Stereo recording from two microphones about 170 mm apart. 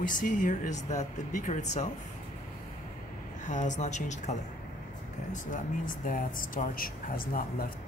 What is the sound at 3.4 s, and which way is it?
Speech, 45° left (ahead or behind).